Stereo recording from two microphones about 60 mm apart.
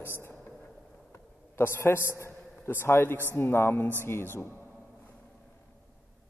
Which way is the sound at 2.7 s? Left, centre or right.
Left.